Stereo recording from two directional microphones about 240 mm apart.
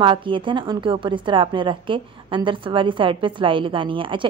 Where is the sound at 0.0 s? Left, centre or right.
Centre.